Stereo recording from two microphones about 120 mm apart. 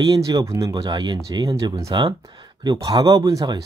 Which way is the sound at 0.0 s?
30° right (ahead or behind).